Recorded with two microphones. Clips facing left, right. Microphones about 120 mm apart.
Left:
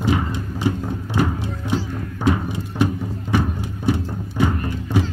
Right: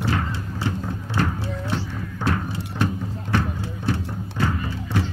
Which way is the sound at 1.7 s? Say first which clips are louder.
Left 4 dB; 15° left (ahead or behind).